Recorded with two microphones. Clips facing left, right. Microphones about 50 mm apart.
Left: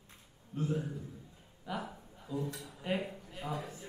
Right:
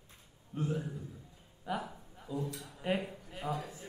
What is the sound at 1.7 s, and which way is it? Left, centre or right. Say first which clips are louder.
Speech: right 2 dB; centre.